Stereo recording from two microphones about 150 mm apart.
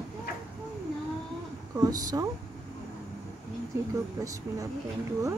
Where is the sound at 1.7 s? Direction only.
25° right (ahead or behind).